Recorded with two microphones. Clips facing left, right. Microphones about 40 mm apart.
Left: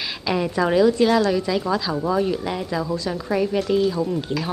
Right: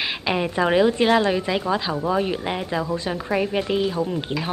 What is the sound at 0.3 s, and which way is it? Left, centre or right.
A woman's voice, right.